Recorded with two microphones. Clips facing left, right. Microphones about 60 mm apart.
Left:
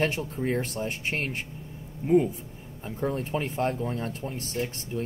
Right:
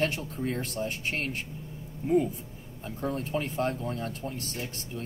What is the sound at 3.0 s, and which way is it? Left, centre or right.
Speech, left.